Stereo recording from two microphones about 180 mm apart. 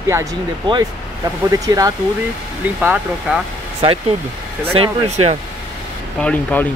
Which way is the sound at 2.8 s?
5° right (ahead or behind).